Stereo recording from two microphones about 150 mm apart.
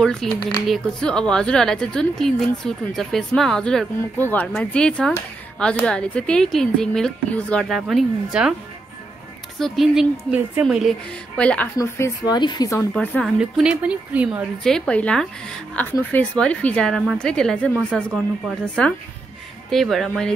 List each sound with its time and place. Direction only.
0.0 s a woman's voice: 5° left (ahead or behind)
9.6 s a woman's voice: centre (ahead or behind)
11.8 s speech: 25° left (ahead or behind)
12.9 s a woman's voice: 10° left (ahead or behind)
13.2 s a woman's voice: 5° right (ahead or behind)
14.6 s a woman's voice: 5° left (ahead or behind)